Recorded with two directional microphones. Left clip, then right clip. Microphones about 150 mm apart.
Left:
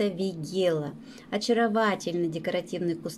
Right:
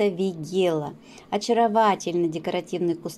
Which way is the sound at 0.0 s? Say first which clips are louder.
Right 5 dB; 45° right (ahead or behind).